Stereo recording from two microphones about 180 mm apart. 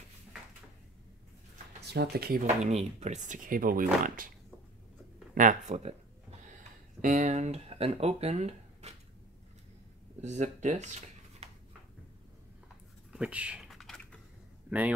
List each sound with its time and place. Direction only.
1.9 s speech: 65° right (ahead or behind)
2.4 s speech: 40° right (ahead or behind)
5.3 s speech: 45° right (ahead or behind)
7.0 s speech: 45° right (ahead or behind)
10.2 s speech: 40° right (ahead or behind)
13.1 s typing: 5° right (ahead or behind)